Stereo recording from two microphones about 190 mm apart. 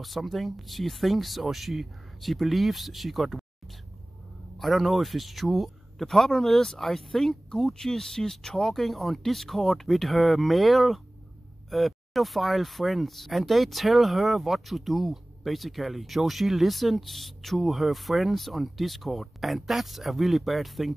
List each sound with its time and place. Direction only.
0.0 s speech: centre (ahead or behind)